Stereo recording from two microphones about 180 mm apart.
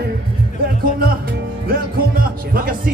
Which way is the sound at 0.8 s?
55° right (ahead or behind).